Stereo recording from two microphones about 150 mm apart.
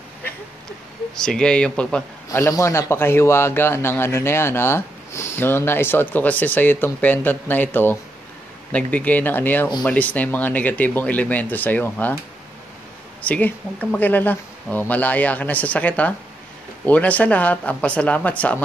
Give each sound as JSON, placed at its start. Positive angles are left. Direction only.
{"t": 1.1, "sound": "speech", "side_deg": 5}
{"t": 2.2, "sound": "a man's voice", "side_deg": 20}
{"t": 13.2, "sound": "a man's voice", "side_deg": 10}